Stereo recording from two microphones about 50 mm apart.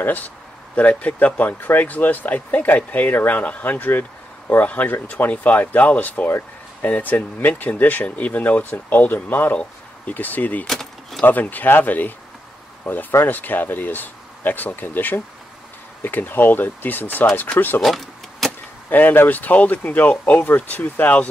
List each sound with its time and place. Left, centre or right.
0.0 s speech: left
10.7 s keys jangling: centre
11.2 s speech: left
13.2 s speech: left
17.8 s keys jangling: centre
18.9 s speech: left